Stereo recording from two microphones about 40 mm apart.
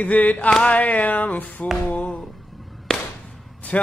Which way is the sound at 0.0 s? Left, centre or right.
Left.